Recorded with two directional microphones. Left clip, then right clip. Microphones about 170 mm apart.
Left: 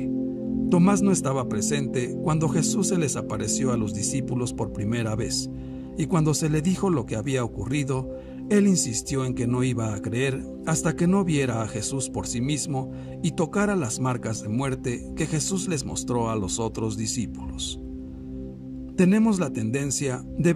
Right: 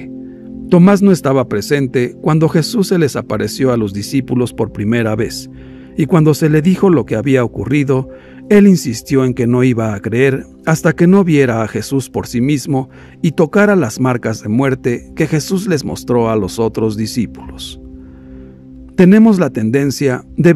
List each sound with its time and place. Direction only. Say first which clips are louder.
0.7 s speech: right 12 dB; 50° right (ahead or behind)
18.9 s speech: right 13 dB; 50° right (ahead or behind)